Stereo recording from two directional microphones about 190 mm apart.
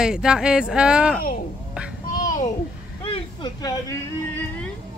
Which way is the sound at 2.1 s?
45° left (ahead or behind).